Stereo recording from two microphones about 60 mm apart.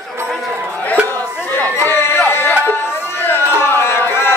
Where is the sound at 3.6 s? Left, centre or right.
Left.